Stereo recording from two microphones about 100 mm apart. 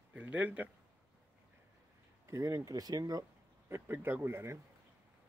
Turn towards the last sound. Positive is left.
turn(degrees=-25)  # may be behind; listen again after turning